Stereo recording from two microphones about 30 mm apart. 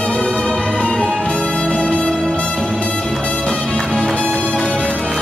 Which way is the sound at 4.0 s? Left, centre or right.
Left.